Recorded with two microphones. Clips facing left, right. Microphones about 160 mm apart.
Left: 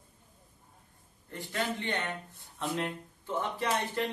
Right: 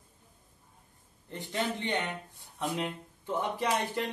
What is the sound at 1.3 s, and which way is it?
Speech, 20° right (ahead or behind).